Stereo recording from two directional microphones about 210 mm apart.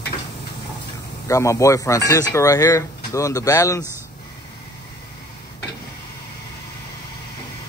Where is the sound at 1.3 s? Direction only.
15° left (ahead or behind).